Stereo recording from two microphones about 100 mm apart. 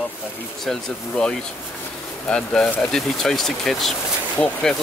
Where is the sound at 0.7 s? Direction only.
5° left (ahead or behind).